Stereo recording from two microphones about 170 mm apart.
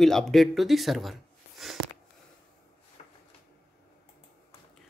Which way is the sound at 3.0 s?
40° left (ahead or behind).